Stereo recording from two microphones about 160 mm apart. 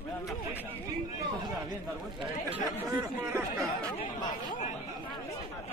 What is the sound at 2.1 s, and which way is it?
Speech, 25° right (ahead or behind).